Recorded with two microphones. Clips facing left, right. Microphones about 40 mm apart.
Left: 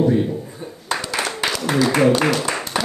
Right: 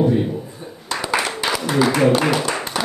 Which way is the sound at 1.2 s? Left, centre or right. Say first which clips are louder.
Right 1 dB; centre.